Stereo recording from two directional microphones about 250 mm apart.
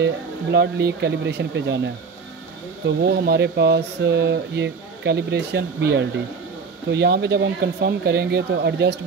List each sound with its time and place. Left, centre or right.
0.0 s speech: right
3.0 s speech: right